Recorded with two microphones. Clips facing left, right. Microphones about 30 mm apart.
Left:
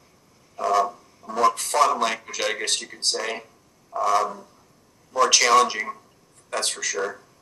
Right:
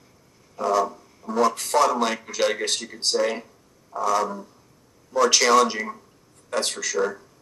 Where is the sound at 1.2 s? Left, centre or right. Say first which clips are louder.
Right 4 dB; centre.